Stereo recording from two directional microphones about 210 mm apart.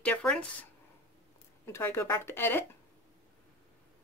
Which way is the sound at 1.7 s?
10° left (ahead or behind).